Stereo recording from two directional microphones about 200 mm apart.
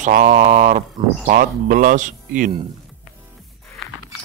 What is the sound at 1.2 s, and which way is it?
Speech, 45° right (ahead or behind).